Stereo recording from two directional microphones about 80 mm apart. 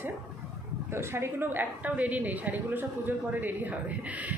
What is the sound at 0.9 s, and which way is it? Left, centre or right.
A woman's voice, right.